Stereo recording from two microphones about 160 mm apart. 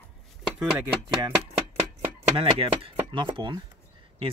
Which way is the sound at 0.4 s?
5° right (ahead or behind).